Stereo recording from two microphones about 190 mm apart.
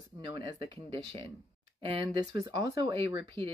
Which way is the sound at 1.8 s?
30° right (ahead or behind).